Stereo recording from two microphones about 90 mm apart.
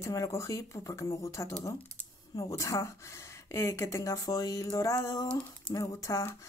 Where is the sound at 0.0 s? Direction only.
35° left (ahead or behind).